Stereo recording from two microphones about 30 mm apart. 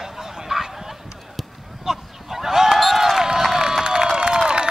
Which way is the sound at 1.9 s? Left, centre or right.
Centre.